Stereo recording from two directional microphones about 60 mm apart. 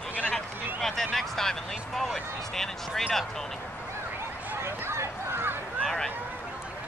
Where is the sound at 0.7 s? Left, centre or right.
Centre.